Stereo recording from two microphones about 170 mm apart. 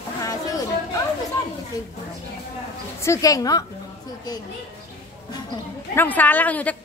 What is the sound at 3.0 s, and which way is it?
Speech, 20° left (ahead or behind).